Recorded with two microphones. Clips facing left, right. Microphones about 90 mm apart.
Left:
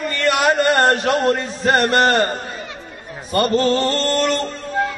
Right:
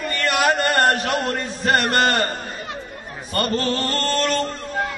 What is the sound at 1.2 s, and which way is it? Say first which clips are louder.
Speech: left 6 dB; 15° left (ahead or behind).